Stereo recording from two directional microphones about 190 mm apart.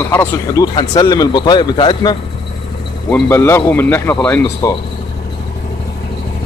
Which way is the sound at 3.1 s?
10° left (ahead or behind).